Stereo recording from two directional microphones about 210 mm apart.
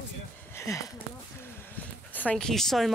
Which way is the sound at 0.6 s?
15° left (ahead or behind).